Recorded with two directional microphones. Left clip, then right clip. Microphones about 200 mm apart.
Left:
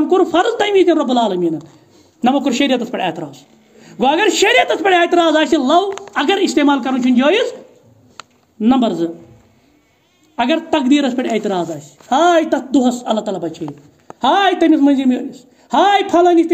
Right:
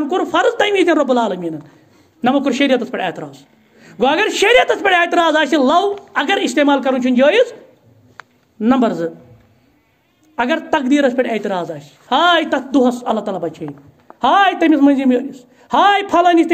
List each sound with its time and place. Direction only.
0.1 s a woman's voice: 20° right (ahead or behind)
8.5 s a woman's voice: 15° right (ahead or behind)
10.3 s a man's voice: 20° right (ahead or behind)